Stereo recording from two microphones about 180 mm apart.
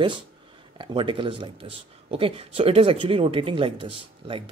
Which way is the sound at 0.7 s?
30° right (ahead or behind).